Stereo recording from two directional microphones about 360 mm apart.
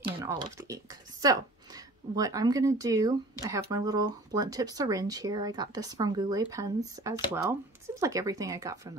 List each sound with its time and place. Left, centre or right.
0.0 s speech: centre